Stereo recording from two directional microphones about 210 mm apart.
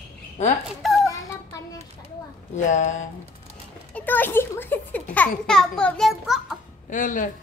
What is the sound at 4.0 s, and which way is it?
A child's voice, 10° left (ahead or behind).